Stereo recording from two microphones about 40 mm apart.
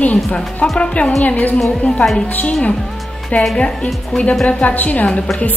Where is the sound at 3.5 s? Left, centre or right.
Left.